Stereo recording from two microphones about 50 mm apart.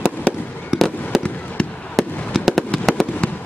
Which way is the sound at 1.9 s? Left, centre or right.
Centre.